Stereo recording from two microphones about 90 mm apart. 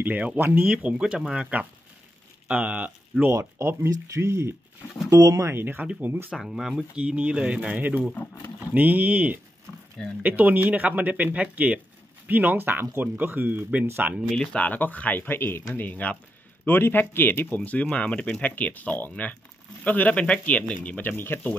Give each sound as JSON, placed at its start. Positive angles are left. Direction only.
{"t": 0.0, "sound": "speech", "side_deg": -15}
{"t": 0.7, "sound": "speech", "side_deg": -10}
{"t": 3.3, "sound": "speech", "side_deg": -30}
{"t": 6.3, "sound": "speech", "side_deg": -5}
{"t": 14.3, "sound": "speech", "side_deg": 10}